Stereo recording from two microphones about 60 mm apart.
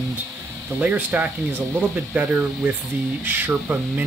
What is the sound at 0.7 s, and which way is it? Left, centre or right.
Speech, right.